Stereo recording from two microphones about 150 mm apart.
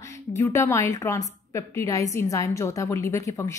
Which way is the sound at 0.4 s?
20° left (ahead or behind).